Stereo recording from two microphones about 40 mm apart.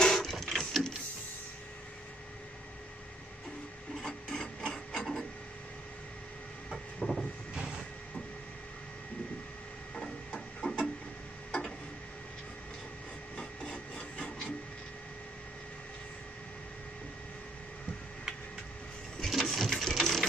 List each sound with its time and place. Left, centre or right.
0.0 s printer: centre
4.0 s printer: centre
7.0 s vehicle: left
7.5 s vehicle: centre
9.9 s a sound: left
13.4 s wood: left
19.2 s sewing machine: centre